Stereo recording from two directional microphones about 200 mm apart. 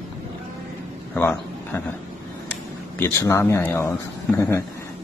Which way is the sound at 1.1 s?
10° left (ahead or behind).